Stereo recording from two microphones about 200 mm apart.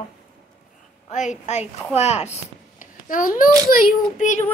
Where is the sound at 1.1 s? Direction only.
35° left (ahead or behind).